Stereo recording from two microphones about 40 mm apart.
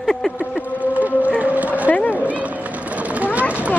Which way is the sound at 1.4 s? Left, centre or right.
Right.